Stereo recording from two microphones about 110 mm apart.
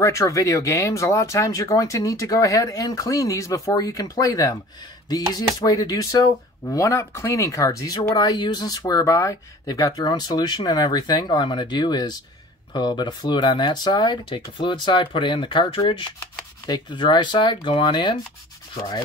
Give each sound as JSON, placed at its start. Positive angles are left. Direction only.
{"t": 0.0, "sound": "speech", "side_deg": 30}